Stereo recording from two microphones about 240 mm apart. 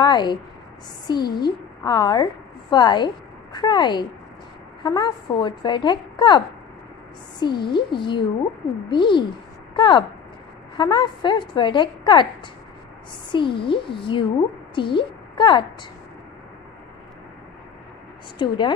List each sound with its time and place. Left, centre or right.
0.0 s a woman's voice: centre
13.3 s a woman's voice: left
18.4 s a woman's voice: centre